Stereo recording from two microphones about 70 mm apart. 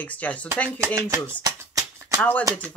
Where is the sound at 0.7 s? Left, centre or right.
Right.